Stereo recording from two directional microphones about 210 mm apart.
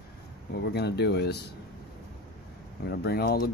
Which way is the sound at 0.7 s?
50° left (ahead or behind).